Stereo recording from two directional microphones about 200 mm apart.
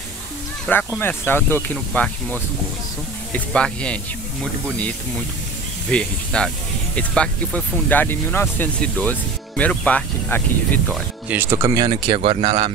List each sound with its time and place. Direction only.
0.9 s speech: 10° left (ahead or behind)
11.2 s speech: 10° right (ahead or behind); by 12.7 s 30° right (ahead or behind)